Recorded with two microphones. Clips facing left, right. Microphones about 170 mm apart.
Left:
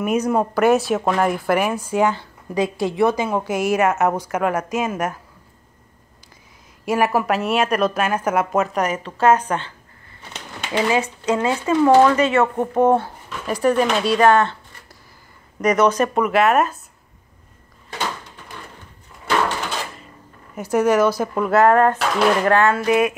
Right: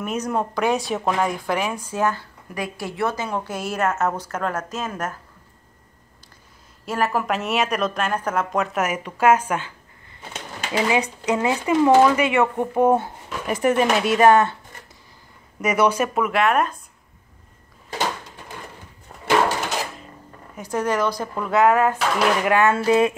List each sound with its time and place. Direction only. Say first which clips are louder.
0.0 s speech: left 5 dB; 10° left (ahead or behind)
6.9 s a woman's voice: left 4 dB; 10° left (ahead or behind); by 9.7 s 10° right (ahead or behind)
10.9 s speech: left 2 dB; 15° right (ahead or behind)
15.6 s a woman's voice: left 3 dB; 10° right (ahead or behind)
20.5 s a woman's voice: left 6 dB; 10° left (ahead or behind); by 22.8 s 15° right (ahead or behind)
22.8 s a sound: even; 30° right (ahead or behind)